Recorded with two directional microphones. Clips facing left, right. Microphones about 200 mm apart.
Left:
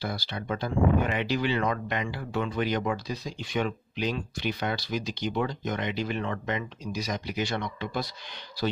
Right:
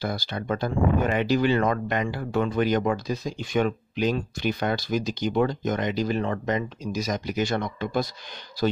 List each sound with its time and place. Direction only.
0.0 s speech: 45° right (ahead or behind)